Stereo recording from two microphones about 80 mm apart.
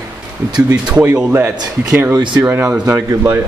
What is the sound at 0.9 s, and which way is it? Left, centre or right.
Speech, right.